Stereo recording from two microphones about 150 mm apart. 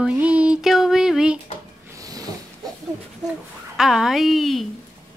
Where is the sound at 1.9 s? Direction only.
25° right (ahead or behind).